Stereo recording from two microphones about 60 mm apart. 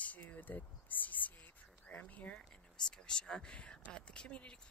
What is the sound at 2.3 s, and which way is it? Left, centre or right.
Speech, centre.